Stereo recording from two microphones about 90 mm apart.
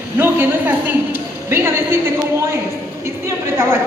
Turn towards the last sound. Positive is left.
turn(degrees=-30)  # may be behind; listen again after turning